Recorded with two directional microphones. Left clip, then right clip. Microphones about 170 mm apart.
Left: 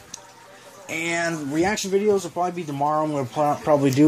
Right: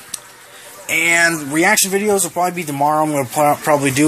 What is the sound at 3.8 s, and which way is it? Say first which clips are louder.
Speech: right 3 dB; 25° left (ahead or behind).